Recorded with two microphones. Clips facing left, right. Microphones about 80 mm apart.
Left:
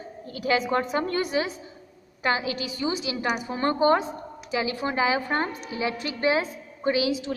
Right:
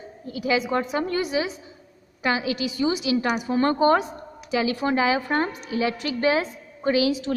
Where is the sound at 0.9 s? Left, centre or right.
Left.